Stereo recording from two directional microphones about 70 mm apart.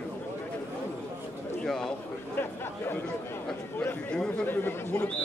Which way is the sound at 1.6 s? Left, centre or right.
Centre.